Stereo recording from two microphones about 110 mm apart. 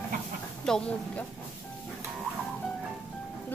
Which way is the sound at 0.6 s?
5° left (ahead or behind).